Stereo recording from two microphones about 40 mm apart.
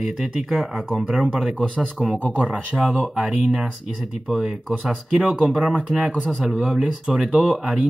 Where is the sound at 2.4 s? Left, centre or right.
Right.